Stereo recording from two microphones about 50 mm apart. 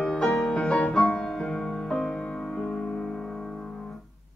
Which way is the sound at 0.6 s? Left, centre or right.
Left.